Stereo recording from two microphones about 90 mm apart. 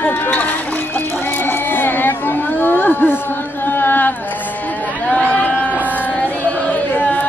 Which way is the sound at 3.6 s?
25° left (ahead or behind).